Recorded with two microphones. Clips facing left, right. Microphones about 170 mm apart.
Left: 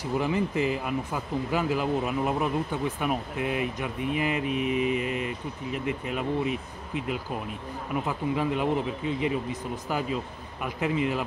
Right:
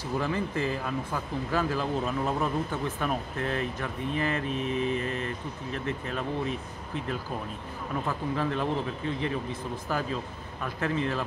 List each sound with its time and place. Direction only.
0.0 s speech: 15° left (ahead or behind)